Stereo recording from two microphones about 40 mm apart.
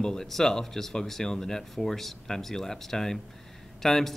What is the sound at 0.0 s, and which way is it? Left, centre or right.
Speech, centre.